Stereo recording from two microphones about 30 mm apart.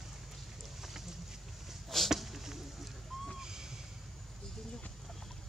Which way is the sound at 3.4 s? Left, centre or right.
Centre.